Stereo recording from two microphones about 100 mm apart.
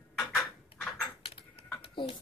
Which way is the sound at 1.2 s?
70° left (ahead or behind).